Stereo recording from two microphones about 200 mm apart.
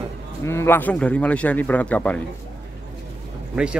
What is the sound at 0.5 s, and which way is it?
A man's voice, 10° left (ahead or behind).